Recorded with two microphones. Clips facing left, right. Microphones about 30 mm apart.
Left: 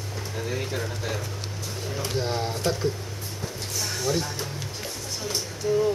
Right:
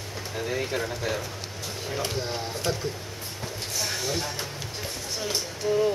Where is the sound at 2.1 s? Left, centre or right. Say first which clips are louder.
Left 3 dB; centre.